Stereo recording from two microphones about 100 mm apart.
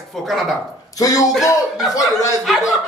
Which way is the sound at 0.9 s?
35° left (ahead or behind).